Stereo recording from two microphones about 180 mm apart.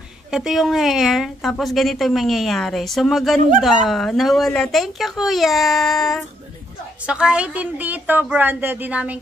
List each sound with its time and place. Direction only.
0.3 s a woman's voice: 5° right (ahead or behind)